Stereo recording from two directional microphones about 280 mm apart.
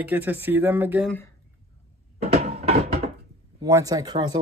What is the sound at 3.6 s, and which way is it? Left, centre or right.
Speech, centre.